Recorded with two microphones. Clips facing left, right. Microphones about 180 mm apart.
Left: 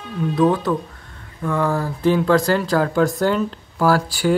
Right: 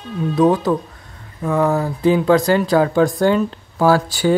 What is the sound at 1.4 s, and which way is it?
Speech, 20° right (ahead or behind).